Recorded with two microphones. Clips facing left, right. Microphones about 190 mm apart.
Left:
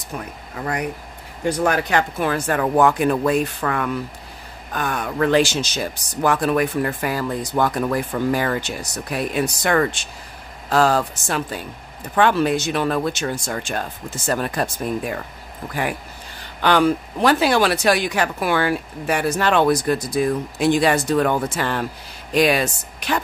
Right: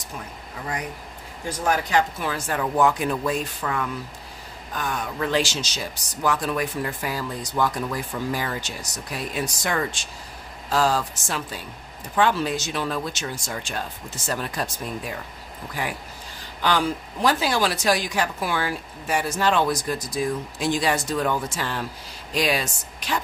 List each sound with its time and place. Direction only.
1.4 s speech: 65° left (ahead or behind)
16.6 s speech: 65° left (ahead or behind)